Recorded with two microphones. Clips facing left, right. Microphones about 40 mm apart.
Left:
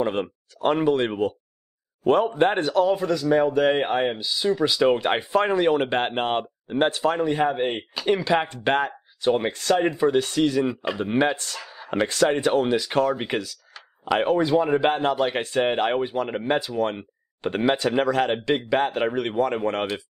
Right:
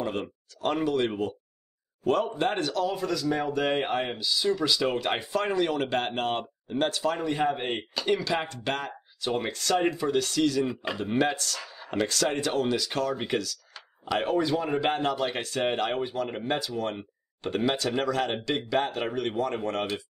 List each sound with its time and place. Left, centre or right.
0.0 s speech: left
7.4 s speech: centre
8.2 s speech: left